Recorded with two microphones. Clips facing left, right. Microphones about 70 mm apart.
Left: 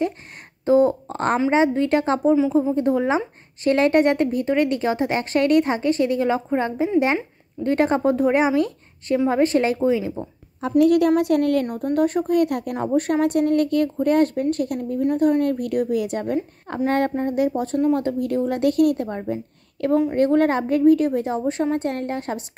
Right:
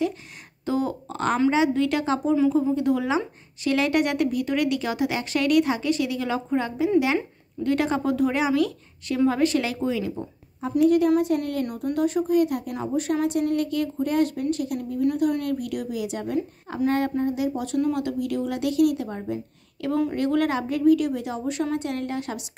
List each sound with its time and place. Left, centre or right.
0.7 s a woman's voice: left
10.8 s a woman's voice: left
11.6 s a woman's voice: left